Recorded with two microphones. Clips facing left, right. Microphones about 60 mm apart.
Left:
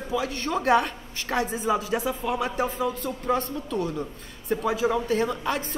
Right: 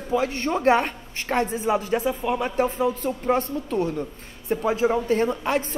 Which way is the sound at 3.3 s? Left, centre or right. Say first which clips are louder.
Right 3 dB; right.